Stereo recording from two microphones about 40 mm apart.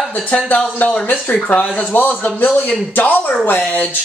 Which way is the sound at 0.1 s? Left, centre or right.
Left.